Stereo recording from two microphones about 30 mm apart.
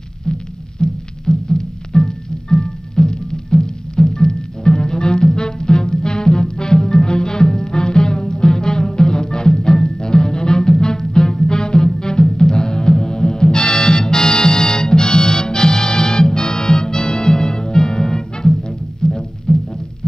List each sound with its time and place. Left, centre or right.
0.8 s music: left
1.2 s music: left